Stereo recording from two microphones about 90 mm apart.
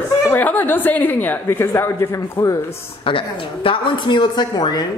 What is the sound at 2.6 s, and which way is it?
A woman's voice, 75° left (ahead or behind).